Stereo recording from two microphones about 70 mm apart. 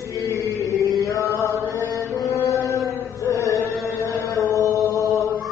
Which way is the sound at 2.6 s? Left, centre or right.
Left.